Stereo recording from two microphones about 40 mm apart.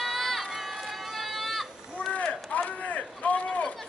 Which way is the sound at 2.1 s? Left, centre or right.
Left.